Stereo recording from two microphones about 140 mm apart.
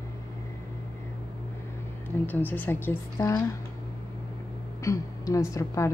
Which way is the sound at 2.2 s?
15° left (ahead or behind).